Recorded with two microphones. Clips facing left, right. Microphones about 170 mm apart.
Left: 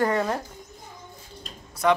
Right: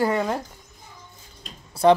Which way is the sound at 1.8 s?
30° right (ahead or behind).